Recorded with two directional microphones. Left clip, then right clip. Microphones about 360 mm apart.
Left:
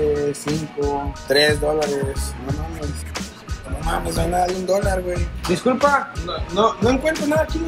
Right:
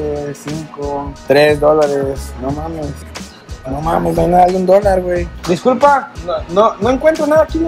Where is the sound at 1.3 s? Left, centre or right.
Centre.